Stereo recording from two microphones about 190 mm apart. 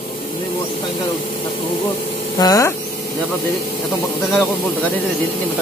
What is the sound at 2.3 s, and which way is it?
Speech, 20° left (ahead or behind).